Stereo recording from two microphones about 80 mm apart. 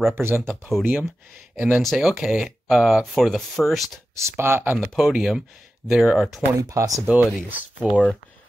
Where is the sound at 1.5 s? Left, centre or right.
Centre.